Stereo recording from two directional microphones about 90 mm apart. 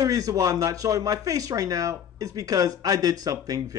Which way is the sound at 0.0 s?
40° right (ahead or behind).